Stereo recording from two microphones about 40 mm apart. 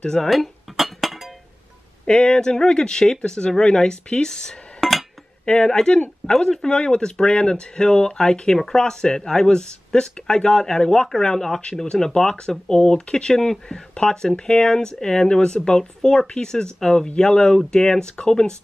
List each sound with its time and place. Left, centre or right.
0.0 s speech: centre
0.3 s dishes: centre
2.0 s speech: centre
4.7 s chink: centre
5.4 s speech: left